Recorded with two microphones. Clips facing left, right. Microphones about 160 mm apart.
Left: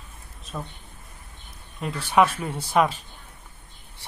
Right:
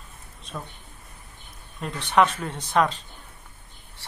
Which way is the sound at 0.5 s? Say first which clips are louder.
Left 2 dB; 5° left (ahead or behind).